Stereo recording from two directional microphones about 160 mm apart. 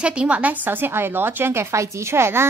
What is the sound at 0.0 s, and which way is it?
A woman's voice, 5° right (ahead or behind).